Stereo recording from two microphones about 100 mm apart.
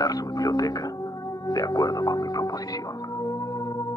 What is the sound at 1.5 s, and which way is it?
Speech, 40° left (ahead or behind).